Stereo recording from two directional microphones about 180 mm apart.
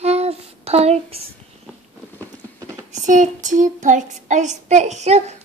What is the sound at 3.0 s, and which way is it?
Child singing, 45° right (ahead or behind).